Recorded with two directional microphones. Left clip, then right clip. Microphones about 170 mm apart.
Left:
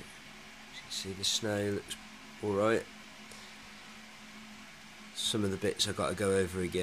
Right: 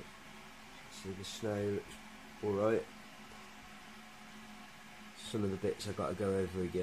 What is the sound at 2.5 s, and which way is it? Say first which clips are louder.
Speech: left 3 dB; 20° left (ahead or behind).